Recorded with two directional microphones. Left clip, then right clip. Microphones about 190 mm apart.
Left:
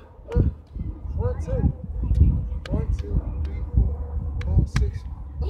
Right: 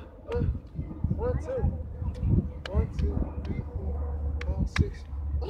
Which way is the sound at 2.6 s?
5° left (ahead or behind).